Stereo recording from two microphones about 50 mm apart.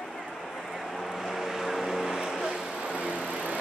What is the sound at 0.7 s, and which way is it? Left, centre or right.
Vehicle, centre.